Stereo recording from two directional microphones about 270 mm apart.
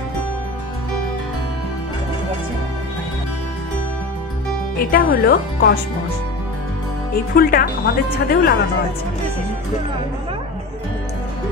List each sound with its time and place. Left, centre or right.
4.7 s speech: left
7.3 s speech: left